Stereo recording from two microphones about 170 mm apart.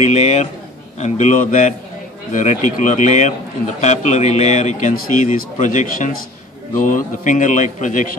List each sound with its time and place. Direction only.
0.0 s a man's voice: 40° left (ahead or behind)